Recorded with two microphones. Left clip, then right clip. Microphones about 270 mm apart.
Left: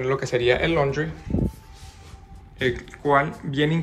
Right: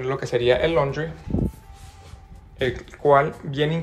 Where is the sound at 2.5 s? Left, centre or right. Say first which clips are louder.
Even; centre.